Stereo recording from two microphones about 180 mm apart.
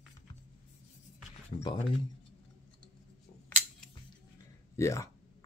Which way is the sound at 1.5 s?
30° left (ahead or behind).